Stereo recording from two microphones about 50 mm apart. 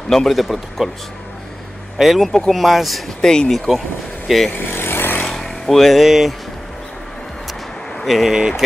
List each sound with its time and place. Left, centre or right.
0.1 s speech: centre
2.0 s speech: centre
3.2 s speech: centre
4.5 s vehicle: left
5.2 s vehicle: centre
8.0 s speech: centre
8.4 s speech: centre